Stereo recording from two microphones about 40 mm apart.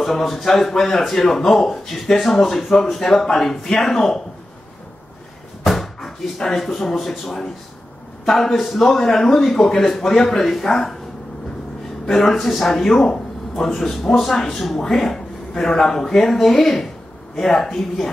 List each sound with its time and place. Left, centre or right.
0.0 s speech: centre
5.6 s speech: centre
12.1 s speech: centre